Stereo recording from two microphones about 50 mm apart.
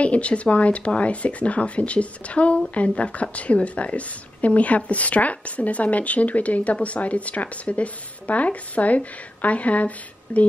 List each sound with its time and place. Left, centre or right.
0.0 s speech: left